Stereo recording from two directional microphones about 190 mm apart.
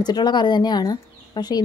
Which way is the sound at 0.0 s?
20° left (ahead or behind).